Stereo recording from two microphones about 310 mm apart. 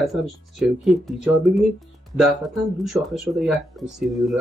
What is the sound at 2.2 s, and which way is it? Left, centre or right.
Speech, centre.